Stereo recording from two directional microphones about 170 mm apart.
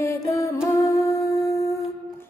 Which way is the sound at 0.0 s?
15° left (ahead or behind).